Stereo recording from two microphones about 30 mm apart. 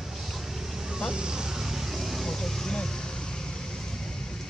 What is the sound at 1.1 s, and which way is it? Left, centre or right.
Vehicle, right.